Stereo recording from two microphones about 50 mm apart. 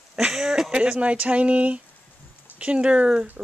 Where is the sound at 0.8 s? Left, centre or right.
Right.